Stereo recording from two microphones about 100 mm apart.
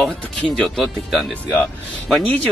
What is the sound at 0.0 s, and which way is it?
Speech, 5° left (ahead or behind).